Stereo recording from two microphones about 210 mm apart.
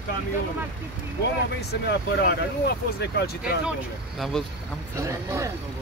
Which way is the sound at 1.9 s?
50° left (ahead or behind).